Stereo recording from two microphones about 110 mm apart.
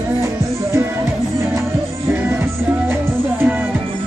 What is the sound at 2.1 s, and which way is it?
Music, 20° right (ahead or behind).